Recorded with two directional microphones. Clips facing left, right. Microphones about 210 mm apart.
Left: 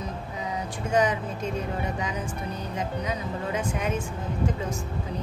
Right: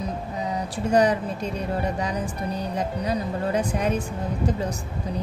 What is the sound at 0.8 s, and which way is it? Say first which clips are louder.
A woman's voice: right 4 dB; 35° right (ahead or behind).